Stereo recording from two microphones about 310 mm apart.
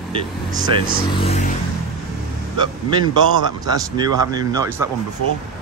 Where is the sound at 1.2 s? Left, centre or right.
Centre.